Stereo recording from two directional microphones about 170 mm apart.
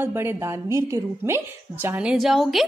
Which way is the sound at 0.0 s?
15° right (ahead or behind).